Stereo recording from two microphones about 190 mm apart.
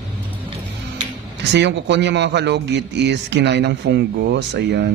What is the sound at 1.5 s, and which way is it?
A man's voice, 65° right (ahead or behind).